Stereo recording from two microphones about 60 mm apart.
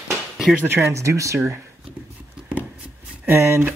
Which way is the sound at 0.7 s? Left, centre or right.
Right.